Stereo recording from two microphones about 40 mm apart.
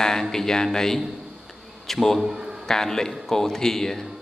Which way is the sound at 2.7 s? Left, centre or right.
Centre.